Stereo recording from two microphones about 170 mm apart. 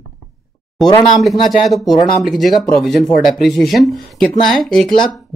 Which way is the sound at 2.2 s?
Centre (ahead or behind).